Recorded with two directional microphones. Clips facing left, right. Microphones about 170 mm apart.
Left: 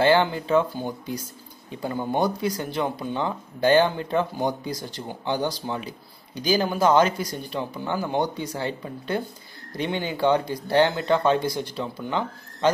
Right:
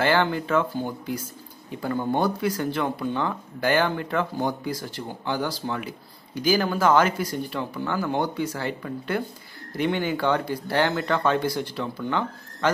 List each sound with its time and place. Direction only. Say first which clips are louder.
0.0 s speech: left 2 dB; 20° left (ahead or behind)